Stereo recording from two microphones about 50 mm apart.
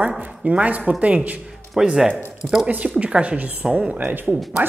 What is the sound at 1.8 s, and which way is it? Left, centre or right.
Speech, centre.